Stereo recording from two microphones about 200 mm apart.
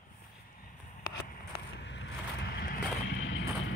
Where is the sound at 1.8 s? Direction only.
65° left (ahead or behind).